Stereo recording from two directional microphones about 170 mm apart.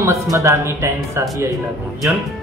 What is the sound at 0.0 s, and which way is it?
A man's voice, 15° right (ahead or behind).